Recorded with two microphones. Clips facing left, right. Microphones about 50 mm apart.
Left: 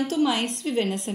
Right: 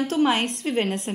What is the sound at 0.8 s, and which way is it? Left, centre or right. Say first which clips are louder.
Speech: right 1 dB; right.